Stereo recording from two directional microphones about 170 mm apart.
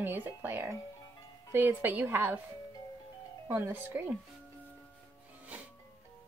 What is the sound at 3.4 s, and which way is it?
Speech, 15° right (ahead or behind).